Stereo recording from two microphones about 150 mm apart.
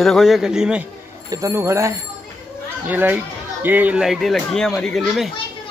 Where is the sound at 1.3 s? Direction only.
20° right (ahead or behind); by 5.3 s 5° left (ahead or behind).